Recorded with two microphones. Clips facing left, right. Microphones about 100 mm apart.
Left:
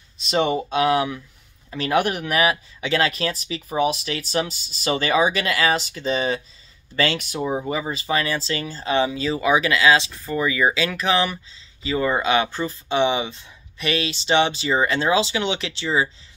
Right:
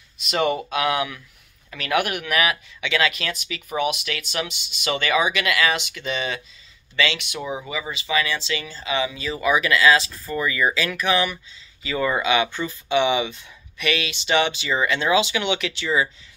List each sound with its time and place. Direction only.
0.2 s speech: 30° left (ahead or behind)